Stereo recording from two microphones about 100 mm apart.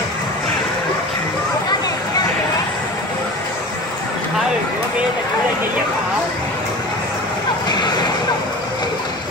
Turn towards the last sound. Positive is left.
turn(degrees=45)  # may be behind; listen again after turning